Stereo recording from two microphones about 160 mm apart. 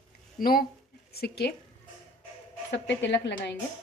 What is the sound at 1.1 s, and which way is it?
Speech, 85° left.